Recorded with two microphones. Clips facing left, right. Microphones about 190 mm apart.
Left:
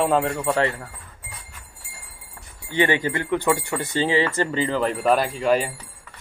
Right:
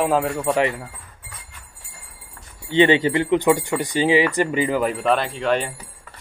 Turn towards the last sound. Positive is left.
turn(degrees=5)  # may be behind; listen again after turning